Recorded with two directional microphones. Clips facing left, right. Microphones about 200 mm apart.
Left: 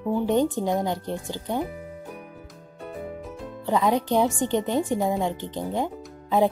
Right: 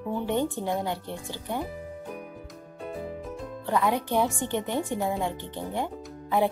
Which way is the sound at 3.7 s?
20° left (ahead or behind).